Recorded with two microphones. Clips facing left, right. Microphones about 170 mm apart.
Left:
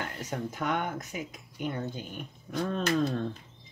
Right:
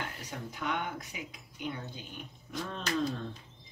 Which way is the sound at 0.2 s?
45° left (ahead or behind).